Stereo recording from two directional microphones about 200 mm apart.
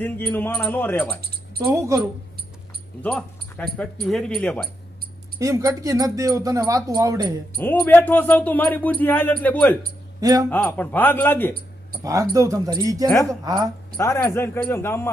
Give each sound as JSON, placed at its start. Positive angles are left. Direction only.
{"t": 0.0, "sound": "speech", "side_deg": 10}
{"t": 1.6, "sound": "speech", "side_deg": -15}
{"t": 3.0, "sound": "speech", "side_deg": 5}
{"t": 5.4, "sound": "speech", "side_deg": -15}
{"t": 7.8, "sound": "speech", "side_deg": 10}
{"t": 10.2, "sound": "speech", "side_deg": -20}
{"t": 10.5, "sound": "speech", "side_deg": 10}
{"t": 12.0, "sound": "speech", "side_deg": -15}
{"t": 13.9, "sound": "speech", "side_deg": 10}